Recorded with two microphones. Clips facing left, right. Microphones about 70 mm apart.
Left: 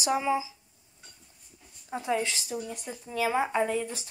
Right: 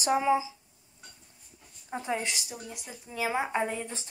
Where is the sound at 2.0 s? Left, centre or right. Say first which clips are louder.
Left 3 dB; right.